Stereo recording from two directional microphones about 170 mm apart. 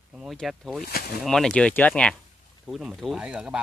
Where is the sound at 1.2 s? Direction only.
5° left (ahead or behind).